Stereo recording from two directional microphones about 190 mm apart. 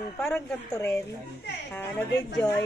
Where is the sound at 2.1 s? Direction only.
65° left (ahead or behind).